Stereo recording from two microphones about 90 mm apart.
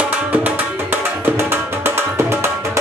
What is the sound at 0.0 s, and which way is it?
Tabla, 15° right (ahead or behind).